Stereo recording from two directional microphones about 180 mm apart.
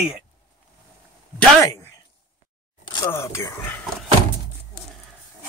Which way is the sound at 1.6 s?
15° left (ahead or behind).